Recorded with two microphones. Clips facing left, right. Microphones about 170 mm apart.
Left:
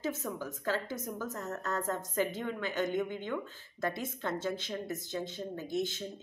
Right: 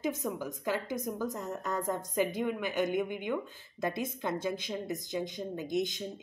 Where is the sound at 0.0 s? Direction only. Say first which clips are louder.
Right 2 dB; 15° right (ahead or behind).